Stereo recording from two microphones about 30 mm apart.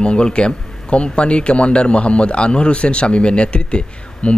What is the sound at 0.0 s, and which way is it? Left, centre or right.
A man's voice, left.